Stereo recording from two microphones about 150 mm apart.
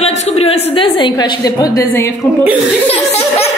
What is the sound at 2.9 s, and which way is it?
Laughter, 40° left (ahead or behind).